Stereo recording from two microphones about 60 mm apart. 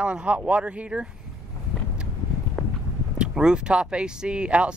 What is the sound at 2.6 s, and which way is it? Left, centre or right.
Horse, left.